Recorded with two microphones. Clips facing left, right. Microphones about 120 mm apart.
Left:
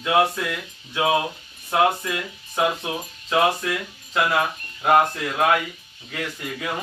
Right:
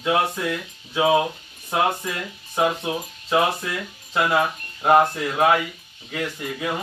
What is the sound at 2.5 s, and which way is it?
Speech, 15° right (ahead or behind).